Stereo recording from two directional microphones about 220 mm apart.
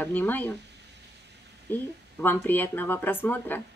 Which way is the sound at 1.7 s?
10° left (ahead or behind).